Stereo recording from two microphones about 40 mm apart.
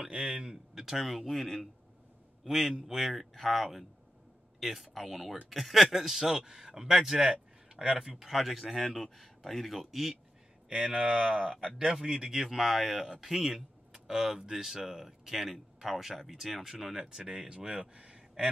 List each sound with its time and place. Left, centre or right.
0.1 s speech: centre
1.0 s speech: centre
7.7 s a sound: right
8.0 s speech: centre
10.7 s speech: centre
11.9 s speech: centre
12.5 s speech: centre; by 18.2 s right